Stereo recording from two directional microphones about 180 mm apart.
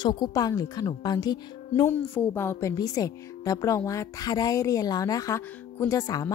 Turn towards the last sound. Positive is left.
turn(degrees=20)  # may be behind; listen again after turning